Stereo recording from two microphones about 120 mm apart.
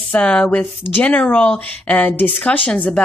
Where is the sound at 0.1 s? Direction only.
10° left (ahead or behind).